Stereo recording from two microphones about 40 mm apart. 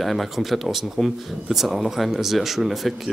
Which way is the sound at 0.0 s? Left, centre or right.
Centre.